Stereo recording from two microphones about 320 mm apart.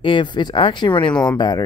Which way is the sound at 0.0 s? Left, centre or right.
Centre.